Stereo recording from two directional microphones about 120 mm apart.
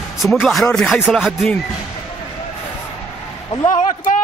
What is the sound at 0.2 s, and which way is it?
Speech, centre (ahead or behind).